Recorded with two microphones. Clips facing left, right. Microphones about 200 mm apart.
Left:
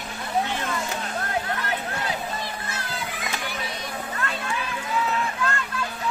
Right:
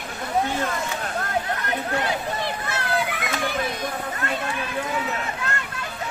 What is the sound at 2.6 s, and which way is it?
Children playing, 65° right (ahead or behind).